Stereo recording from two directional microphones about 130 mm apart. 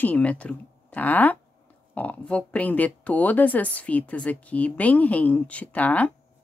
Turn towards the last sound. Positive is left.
turn(degrees=10)  # may be behind; listen again after turning